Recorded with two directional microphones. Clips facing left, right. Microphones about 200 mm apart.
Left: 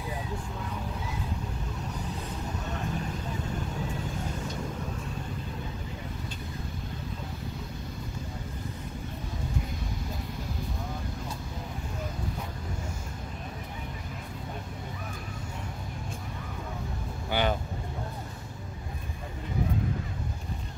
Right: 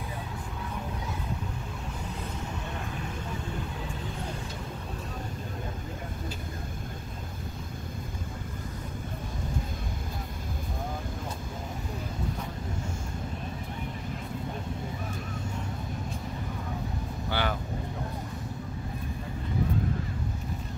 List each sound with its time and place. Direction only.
17.3 s vehicle: 20° left (ahead or behind)